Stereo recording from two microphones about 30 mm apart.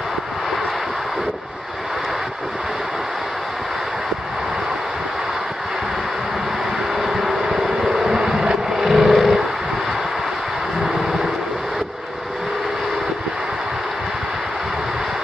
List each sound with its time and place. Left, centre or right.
7.0 s vehicle: centre